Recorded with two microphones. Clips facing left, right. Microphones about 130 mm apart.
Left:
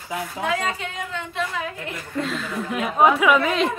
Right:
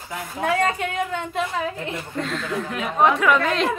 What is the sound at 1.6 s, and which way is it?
Speech, 30° right (ahead or behind).